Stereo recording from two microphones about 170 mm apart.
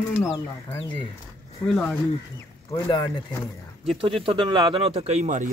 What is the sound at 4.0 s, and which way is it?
A man's voice, 30° right (ahead or behind).